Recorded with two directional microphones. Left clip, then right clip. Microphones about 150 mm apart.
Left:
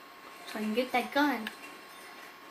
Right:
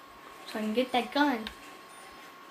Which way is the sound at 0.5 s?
80° right.